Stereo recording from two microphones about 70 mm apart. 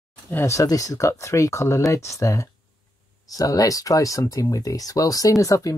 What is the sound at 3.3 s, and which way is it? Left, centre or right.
Speech, left.